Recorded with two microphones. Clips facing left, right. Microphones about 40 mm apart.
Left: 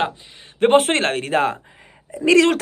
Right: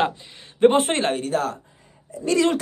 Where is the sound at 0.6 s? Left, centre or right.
Left.